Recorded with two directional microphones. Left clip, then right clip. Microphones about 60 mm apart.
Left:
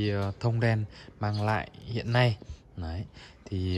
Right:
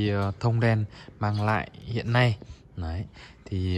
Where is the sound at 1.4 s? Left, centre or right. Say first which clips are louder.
Right 2 dB; left.